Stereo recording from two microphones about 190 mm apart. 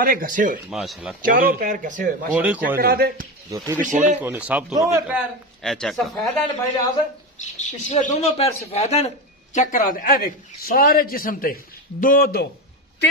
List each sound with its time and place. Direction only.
0.0 s a man's voice: 45° right (ahead or behind)
0.7 s speech: centre (ahead or behind)
1.2 s a man's voice: 45° right (ahead or behind)
2.3 s speech: 5° right (ahead or behind)
2.8 s a man's voice: 55° right (ahead or behind)
3.4 s speech: 15° right (ahead or behind)
3.8 s speech: 40° right (ahead or behind)
4.2 s a man's voice: 10° right (ahead or behind)
7.3 s speech: 40° left (ahead or behind)